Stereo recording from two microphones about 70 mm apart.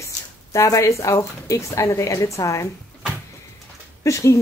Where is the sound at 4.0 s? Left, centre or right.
Left.